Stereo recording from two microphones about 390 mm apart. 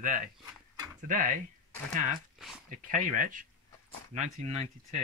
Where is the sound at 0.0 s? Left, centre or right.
Centre.